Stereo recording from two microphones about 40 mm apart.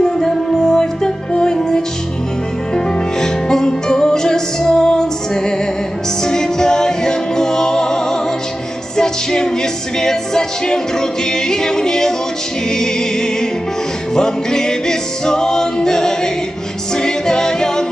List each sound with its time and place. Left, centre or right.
0.0 s music: centre